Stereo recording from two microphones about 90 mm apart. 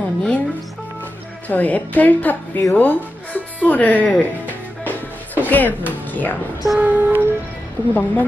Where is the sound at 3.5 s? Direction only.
20° left (ahead or behind).